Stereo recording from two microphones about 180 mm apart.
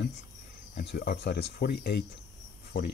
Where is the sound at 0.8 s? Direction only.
60° left (ahead or behind).